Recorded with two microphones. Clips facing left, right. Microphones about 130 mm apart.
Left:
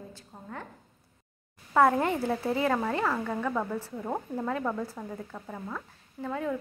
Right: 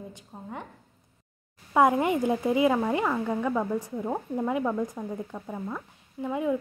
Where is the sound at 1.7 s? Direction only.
15° right (ahead or behind).